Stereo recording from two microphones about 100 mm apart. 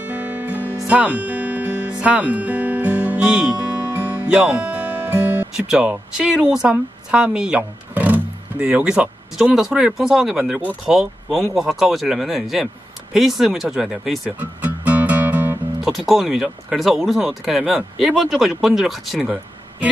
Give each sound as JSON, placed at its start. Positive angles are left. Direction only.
{"t": 0.0, "sound": "music", "side_deg": -15}
{"t": 5.7, "sound": "a woman's voice", "side_deg": -5}
{"t": 14.4, "sound": "music", "side_deg": -15}
{"t": 15.8, "sound": "speech", "side_deg": -5}